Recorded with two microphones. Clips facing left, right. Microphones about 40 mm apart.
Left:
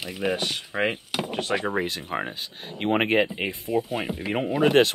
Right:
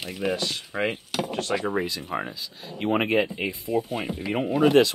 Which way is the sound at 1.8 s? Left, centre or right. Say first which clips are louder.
Left 1 dB; left.